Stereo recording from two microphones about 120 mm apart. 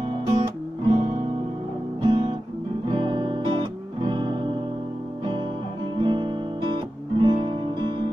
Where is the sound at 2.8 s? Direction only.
40° right (ahead or behind).